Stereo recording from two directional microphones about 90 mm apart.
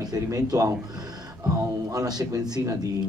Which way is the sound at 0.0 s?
45° right (ahead or behind).